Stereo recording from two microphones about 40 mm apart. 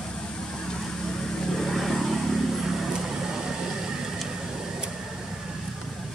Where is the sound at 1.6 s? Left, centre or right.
Centre.